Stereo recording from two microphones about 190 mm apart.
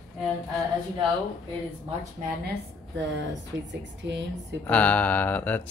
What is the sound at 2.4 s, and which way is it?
A woman's voice, 65° right (ahead or behind).